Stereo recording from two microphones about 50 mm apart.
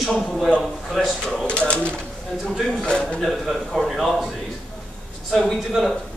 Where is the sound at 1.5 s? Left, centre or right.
Left.